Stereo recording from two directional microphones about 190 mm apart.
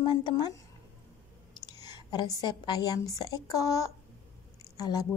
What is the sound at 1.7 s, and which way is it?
A woman's voice, 20° left (ahead or behind).